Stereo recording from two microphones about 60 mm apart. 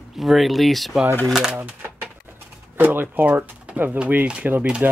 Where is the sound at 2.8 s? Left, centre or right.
Right.